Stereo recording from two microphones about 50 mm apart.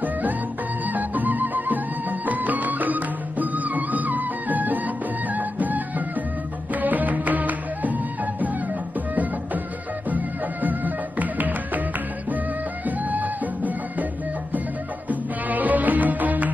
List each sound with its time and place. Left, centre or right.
0.0 s music: right
12.8 s music: right
15.0 s music: right